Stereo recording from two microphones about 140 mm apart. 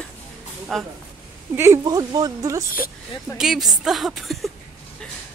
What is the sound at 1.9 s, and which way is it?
Speech, 25° right (ahead or behind).